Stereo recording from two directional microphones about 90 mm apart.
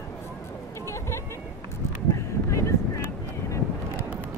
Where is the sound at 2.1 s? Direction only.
35° left (ahead or behind).